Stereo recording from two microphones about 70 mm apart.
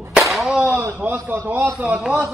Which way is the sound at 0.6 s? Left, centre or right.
Centre.